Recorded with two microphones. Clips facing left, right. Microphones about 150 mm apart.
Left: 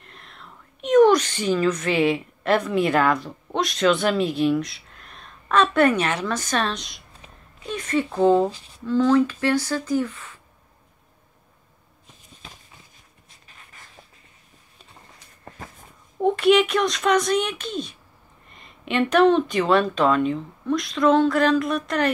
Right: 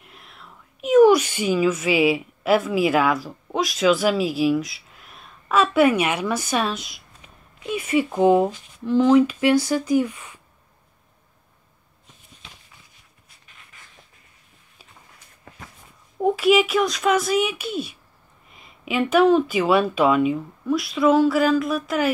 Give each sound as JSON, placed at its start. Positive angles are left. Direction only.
{"t": 0.0, "sound": "speech", "side_deg": -5}
{"t": 8.5, "sound": "speech", "side_deg": 30}
{"t": 8.8, "sound": "speech", "side_deg": -15}
{"t": 12.4, "sound": "a sound", "side_deg": 40}
{"t": 16.2, "sound": "speech", "side_deg": -5}